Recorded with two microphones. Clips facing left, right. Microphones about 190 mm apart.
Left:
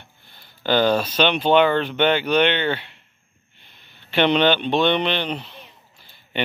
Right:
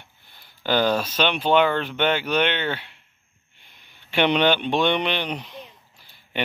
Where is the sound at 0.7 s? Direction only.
5° right (ahead or behind).